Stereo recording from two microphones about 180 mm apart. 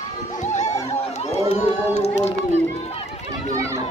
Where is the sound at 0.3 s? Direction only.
40° left (ahead or behind).